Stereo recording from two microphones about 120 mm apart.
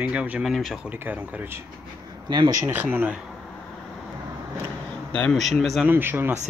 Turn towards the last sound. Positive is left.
turn(degrees=-20)  # may be behind; listen again after turning